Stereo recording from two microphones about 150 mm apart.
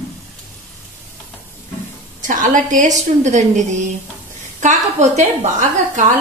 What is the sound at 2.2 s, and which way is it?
A woman's voice, 60° right (ahead or behind).